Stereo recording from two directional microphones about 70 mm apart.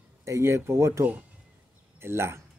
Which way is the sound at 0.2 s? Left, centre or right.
Right.